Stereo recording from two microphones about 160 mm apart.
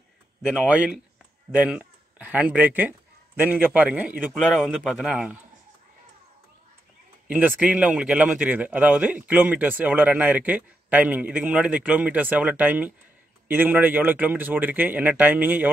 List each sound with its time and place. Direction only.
0.5 s speech: 5° right (ahead or behind)
7.2 s speech: 10° right (ahead or behind)